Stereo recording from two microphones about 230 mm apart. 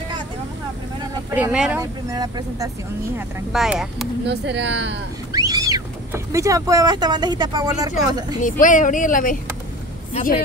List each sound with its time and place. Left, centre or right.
1.3 s speech: centre
1.8 s speech: centre
4.3 s speech: right
5.3 s speech: centre
8.4 s speech: left